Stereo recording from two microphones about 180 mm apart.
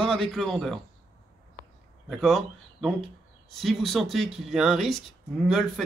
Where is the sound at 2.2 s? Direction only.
Centre (ahead or behind).